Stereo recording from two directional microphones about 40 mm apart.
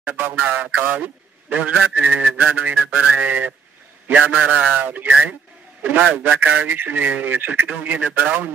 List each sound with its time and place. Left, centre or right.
0.4 s a man's voice: right